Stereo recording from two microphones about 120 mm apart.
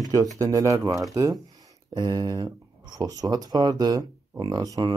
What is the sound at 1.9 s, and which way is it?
Speech, 40° right (ahead or behind).